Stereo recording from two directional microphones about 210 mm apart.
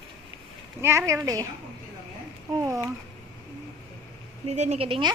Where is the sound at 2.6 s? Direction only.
15° right (ahead or behind).